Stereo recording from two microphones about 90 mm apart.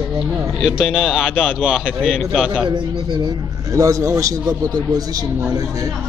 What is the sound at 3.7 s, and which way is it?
Speech, 40° right (ahead or behind).